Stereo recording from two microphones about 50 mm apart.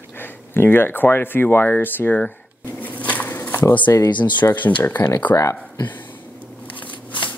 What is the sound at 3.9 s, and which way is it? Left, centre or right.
Speech, left.